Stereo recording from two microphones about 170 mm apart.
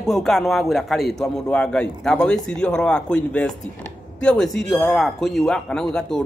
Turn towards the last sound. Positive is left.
turn(degrees=5)  # may be behind; listen again after turning